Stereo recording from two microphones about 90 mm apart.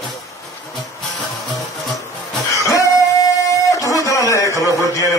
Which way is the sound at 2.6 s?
40° left (ahead or behind).